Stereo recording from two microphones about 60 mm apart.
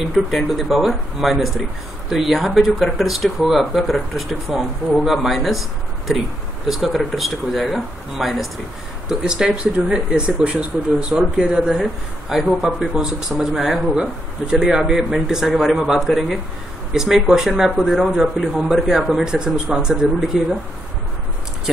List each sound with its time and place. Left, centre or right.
0.0 s speech: centre
9.2 s speech: centre
11.8 s speech: centre